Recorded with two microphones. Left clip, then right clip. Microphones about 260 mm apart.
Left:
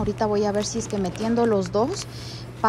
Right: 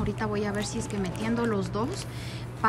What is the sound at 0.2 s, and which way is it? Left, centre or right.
A woman's voice, centre.